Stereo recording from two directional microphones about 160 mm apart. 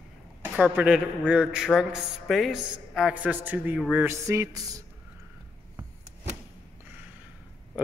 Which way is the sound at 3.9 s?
15° right (ahead or behind).